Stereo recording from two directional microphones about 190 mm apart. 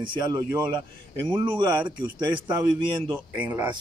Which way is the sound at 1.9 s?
25° right (ahead or behind).